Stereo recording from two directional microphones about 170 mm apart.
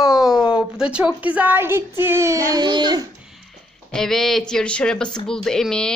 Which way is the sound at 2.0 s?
15° right (ahead or behind).